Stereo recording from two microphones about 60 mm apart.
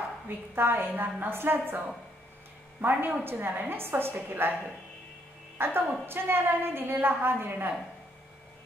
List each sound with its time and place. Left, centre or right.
0.6 s a woman's voice: right
2.8 s a woman's voice: right
5.6 s a woman's voice: right